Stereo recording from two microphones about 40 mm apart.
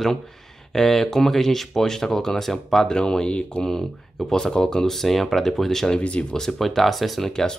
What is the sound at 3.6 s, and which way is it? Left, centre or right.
Speech, centre.